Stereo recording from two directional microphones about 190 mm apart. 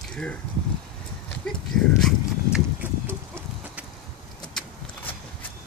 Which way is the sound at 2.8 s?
10° right (ahead or behind).